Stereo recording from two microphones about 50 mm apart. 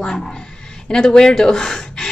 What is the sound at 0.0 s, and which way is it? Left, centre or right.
Speech, centre.